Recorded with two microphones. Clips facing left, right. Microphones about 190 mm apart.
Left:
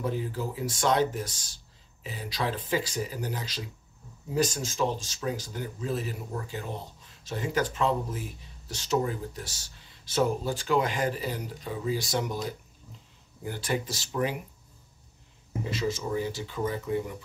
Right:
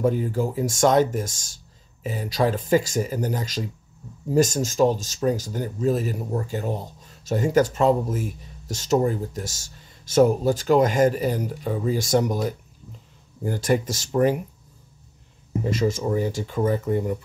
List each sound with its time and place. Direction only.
0.0 s speech: 50° right (ahead or behind)
15.6 s speech: 45° right (ahead or behind)